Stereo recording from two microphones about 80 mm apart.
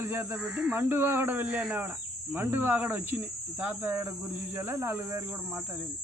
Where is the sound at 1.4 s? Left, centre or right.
Centre.